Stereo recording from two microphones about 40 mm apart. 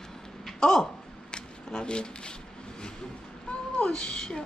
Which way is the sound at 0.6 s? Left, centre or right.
Centre.